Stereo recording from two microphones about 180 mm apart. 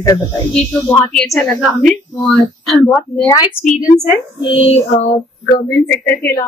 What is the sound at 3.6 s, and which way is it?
Speech, 15° left (ahead or behind).